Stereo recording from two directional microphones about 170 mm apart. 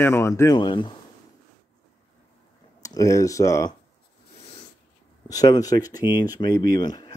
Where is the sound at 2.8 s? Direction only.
20° left (ahead or behind).